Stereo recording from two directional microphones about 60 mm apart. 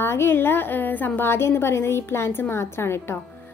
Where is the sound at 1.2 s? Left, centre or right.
Left.